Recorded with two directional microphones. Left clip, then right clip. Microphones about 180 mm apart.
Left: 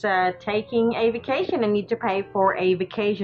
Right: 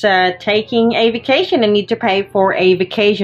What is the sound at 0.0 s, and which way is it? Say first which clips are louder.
A woman's voice: right 9 dB; 45° right (ahead or behind).